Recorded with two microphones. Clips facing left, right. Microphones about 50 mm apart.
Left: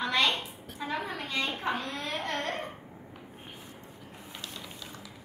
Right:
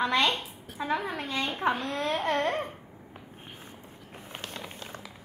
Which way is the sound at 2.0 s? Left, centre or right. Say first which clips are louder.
Right 6 dB; right.